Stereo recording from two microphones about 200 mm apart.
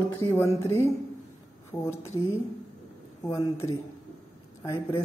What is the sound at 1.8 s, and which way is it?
A man's voice, 15° left (ahead or behind).